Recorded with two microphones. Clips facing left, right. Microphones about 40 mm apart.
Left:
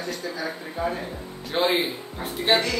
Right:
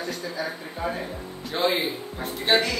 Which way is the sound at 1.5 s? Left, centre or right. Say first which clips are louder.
Left 1 dB; left.